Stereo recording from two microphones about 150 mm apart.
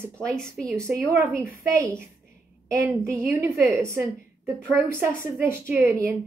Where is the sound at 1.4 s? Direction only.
15° right (ahead or behind).